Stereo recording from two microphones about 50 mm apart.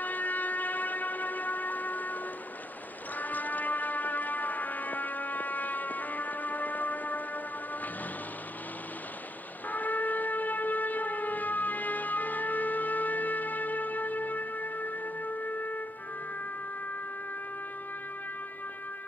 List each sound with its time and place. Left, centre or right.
0.0 s train: left
3.2 s music: left
9.7 s a sound: left